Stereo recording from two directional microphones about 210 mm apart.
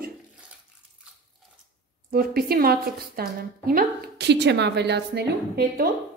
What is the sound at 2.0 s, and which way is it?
A woman's voice, 45° right (ahead or behind).